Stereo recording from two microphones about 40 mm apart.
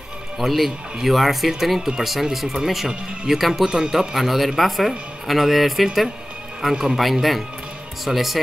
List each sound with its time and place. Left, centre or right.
0.4 s a man's voice: centre
3.6 s speech: centre
4.1 s a man's voice: centre
6.7 s speech: centre
7.0 s a man's voice: centre